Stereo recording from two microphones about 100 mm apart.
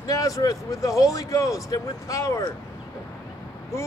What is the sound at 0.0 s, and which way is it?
Speech, 35° left (ahead or behind).